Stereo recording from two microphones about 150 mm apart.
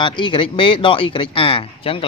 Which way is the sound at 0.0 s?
35° left (ahead or behind).